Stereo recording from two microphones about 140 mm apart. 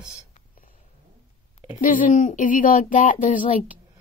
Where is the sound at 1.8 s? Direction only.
70° left (ahead or behind).